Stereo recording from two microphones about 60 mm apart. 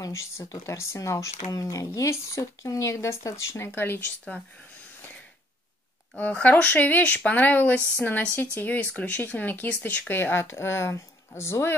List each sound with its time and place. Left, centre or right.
0.0 s speech: left
6.1 s speech: left
10.1 s speech: left